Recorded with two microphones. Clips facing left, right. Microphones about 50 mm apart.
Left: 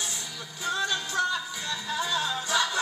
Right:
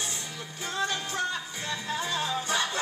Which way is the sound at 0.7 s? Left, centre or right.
Right.